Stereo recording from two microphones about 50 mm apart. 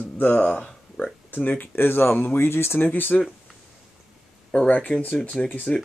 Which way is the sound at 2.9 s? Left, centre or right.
Left.